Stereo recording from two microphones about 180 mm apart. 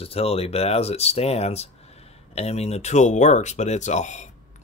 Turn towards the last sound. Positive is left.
turn(degrees=40)  # may be behind; listen again after turning